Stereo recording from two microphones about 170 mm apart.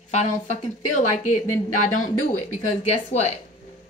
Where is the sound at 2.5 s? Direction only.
40° left (ahead or behind).